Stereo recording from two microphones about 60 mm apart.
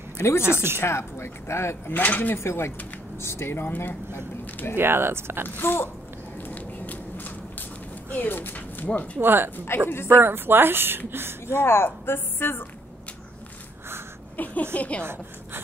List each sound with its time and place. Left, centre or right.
0.2 s speech: left
2.0 s speech: left
2.3 s a woman's voice: left
4.7 s speech: right
5.6 s a woman's voice: left
6.5 s a sound: left
8.1 s speech: left
9.2 s speech: right
9.8 s a woman's voice: left
10.2 s speech: right
11.6 s a woman's voice: left
14.3 s speech: left